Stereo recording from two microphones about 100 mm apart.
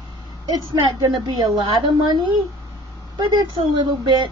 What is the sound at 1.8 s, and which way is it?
A woman's voice, 50° right (ahead or behind).